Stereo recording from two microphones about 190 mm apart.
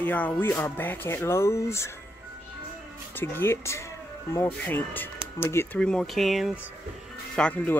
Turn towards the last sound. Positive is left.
turn(degrees=5)  # may be behind; listen again after turning